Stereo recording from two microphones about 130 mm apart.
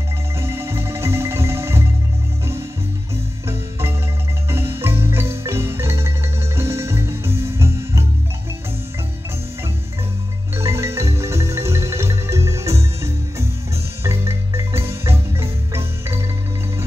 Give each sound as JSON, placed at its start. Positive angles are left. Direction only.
{"t": 0.4, "sound": "music", "side_deg": -20}
{"t": 4.5, "sound": "marimba", "side_deg": -20}
{"t": 10.5, "sound": "music", "side_deg": -20}
{"t": 14.0, "sound": "marimba", "side_deg": -20}